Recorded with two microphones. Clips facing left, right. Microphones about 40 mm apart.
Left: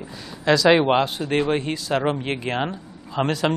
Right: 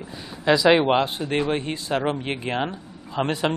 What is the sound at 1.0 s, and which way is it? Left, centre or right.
Speech, right.